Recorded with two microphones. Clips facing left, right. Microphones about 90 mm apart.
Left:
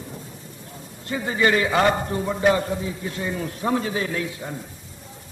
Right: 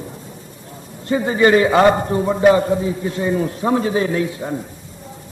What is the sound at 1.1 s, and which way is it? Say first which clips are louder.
A man's voice: right 7 dB; 30° right (ahead or behind).